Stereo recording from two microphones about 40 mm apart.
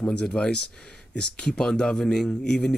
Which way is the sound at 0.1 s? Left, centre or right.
Left.